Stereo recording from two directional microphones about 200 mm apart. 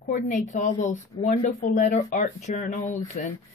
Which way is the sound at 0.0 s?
40° left (ahead or behind).